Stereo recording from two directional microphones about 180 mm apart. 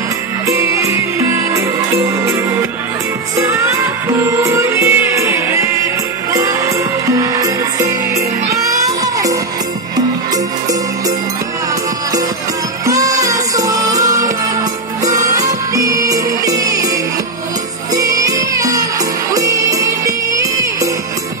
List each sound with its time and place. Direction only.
0.5 s music: 15° right (ahead or behind)
3.3 s music: 15° right (ahead or behind)
7.1 s music: 20° right (ahead or behind)
12.8 s music: 20° right (ahead or behind)
17.9 s music: 20° right (ahead or behind)